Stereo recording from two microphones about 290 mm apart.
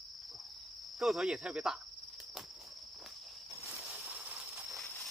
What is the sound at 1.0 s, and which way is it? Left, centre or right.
Speech, centre.